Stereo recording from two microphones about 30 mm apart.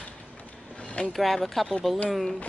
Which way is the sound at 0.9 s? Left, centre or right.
Left.